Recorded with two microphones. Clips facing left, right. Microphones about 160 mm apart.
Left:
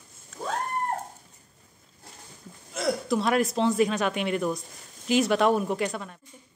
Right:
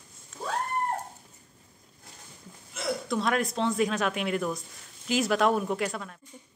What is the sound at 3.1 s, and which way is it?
A woman's voice, 5° left (ahead or behind).